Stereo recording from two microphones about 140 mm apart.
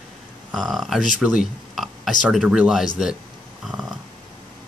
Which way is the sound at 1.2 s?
5° right (ahead or behind).